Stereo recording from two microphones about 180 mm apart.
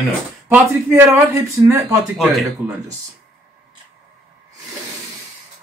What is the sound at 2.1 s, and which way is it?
Speech, centre (ahead or behind).